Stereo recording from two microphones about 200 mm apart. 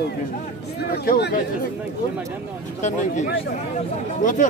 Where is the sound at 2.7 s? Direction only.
35° left (ahead or behind).